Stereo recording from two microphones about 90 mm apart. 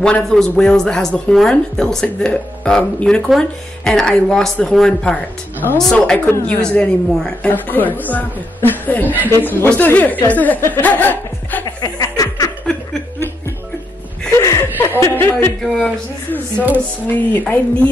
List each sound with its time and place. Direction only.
0.0 s a woman's voice: 10° left (ahead or behind)
11.8 s snicker: 40° left (ahead or behind)
12.7 s chuckle: 10° left (ahead or behind)
14.4 s chuckle: 30° left (ahead or behind)
15.0 s a woman's voice: 30° left (ahead or behind)
15.6 s speech: 5° left (ahead or behind)
16.5 s a sound: 20° right (ahead or behind)
17.1 s a woman's voice: 20° left (ahead or behind)